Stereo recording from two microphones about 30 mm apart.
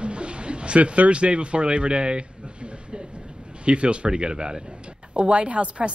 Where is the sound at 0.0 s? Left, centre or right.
Right.